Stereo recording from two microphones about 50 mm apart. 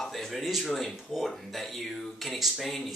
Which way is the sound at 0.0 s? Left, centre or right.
Centre.